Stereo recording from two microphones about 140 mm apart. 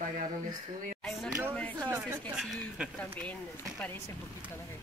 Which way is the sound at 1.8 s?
15° right (ahead or behind).